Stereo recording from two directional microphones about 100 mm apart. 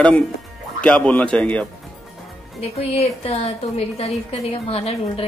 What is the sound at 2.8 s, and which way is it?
A woman's voice, 90° left.